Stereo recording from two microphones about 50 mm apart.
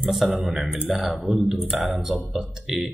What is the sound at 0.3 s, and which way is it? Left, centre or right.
Speech, centre.